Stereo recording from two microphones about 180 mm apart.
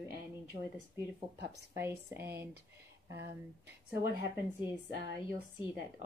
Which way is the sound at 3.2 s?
65° right (ahead or behind).